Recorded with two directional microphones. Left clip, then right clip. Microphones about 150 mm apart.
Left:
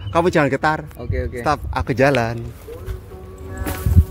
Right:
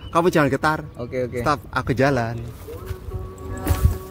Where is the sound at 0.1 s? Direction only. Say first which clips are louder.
Left 2 dB; 20° left (ahead or behind).